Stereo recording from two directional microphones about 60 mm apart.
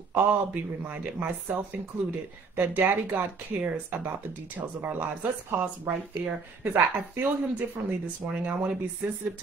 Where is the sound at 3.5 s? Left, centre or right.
Centre.